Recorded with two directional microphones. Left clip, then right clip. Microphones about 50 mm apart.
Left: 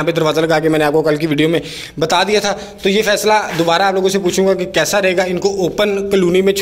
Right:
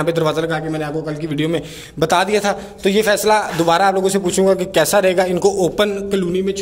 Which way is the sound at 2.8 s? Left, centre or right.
Right.